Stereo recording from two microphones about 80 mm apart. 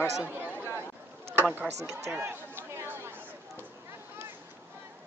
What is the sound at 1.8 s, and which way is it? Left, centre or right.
Speech, right.